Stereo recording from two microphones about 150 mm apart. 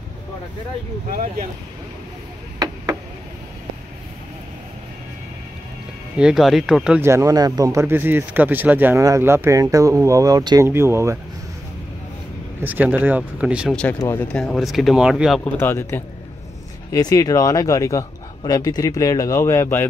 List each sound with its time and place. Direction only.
6.1 s speech: 5° right (ahead or behind)
7.0 s speech: 20° right (ahead or behind)
12.6 s speech: 10° right (ahead or behind)
13.9 s speech: 20° left (ahead or behind)
14.2 s speech: 5° left (ahead or behind)
15.4 s speech: 15° left (ahead or behind)